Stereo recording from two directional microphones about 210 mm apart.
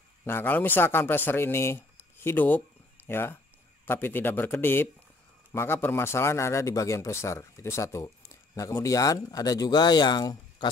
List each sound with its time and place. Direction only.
0.2 s a man's voice: 10° left (ahead or behind)